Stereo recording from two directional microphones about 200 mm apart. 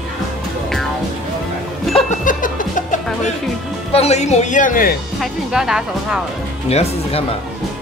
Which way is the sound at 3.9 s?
30° left (ahead or behind).